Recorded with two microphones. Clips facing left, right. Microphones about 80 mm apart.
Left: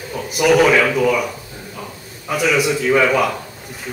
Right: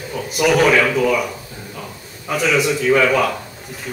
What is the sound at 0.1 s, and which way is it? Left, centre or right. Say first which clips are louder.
A man's voice: left 2 dB; centre.